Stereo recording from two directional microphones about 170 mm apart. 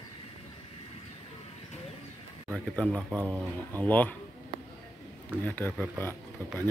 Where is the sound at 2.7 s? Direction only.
5° left (ahead or behind).